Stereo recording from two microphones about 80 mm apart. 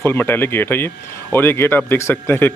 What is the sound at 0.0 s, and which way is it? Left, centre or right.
Speech, left.